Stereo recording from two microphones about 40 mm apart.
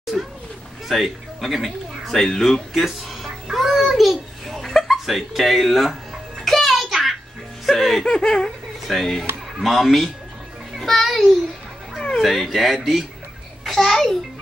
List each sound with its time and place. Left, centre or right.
0.1 s children playing: centre
0.8 s speech: centre
2.7 s babbling: centre
6.4 s music: centre
7.6 s speech: centre
8.0 s speech: centre
8.5 s a sound: centre
9.6 s speech: centre
10.8 s music: centre
12.2 s a child's voice: centre